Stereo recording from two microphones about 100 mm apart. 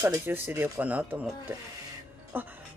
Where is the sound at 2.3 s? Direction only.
20° right (ahead or behind).